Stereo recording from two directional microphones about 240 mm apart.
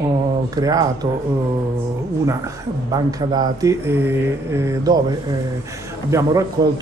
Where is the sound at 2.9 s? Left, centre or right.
Centre.